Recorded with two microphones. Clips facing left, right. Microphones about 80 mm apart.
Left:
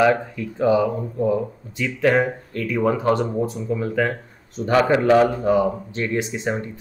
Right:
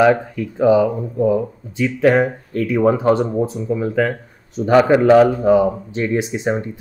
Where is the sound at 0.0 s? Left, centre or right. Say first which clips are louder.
Right 4 dB; centre.